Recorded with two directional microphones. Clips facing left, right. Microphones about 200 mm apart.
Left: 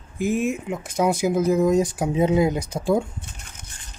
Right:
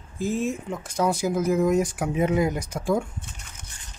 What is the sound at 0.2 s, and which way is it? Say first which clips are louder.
Speech: left 3 dB; 15° left (ahead or behind).